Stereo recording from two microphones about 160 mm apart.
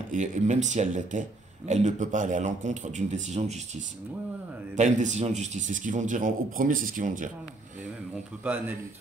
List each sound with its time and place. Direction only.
0.1 s a man's voice: 50° right (ahead or behind)
4.7 s a man's voice: 50° right (ahead or behind)